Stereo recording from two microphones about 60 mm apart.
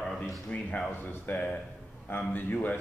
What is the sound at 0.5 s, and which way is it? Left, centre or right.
A man's voice, left.